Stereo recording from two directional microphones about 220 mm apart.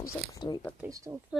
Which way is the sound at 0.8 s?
15° right (ahead or behind).